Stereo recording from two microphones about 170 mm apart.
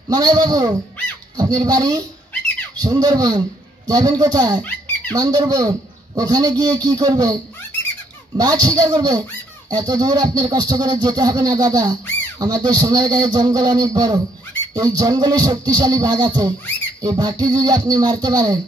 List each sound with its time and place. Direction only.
0.1 s music: 25° right (ahead or behind)
8.4 s music: 25° right (ahead or behind)